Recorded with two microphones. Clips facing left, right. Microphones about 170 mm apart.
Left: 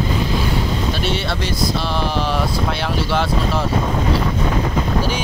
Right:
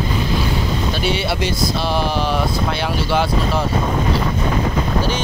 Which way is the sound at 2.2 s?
Centre (ahead or behind).